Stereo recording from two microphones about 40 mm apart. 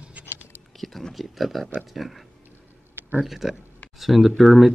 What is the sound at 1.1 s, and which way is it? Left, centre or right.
Speech, centre.